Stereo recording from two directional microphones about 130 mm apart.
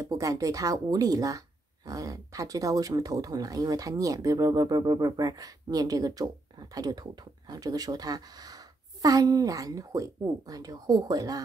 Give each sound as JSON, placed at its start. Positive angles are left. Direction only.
{"t": 0.0, "sound": "speech", "side_deg": -25}